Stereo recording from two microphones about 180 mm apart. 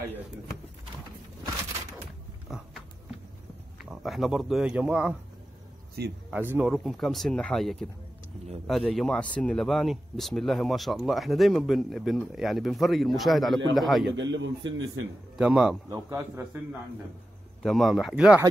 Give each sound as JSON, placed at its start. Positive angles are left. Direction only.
{"t": 2.4, "sound": "a sound", "side_deg": 0}
{"t": 3.9, "sound": "speech", "side_deg": 0}
{"t": 6.0, "sound": "speech", "side_deg": -65}
{"t": 6.3, "sound": "a man's voice", "side_deg": -10}
{"t": 6.7, "sound": "speech", "side_deg": 0}
{"t": 14.1, "sound": "a man's voice", "side_deg": -85}
{"t": 15.3, "sound": "speech", "side_deg": -5}
{"t": 15.9, "sound": "a man's voice", "side_deg": -15}
{"t": 17.6, "sound": "speech", "side_deg": 0}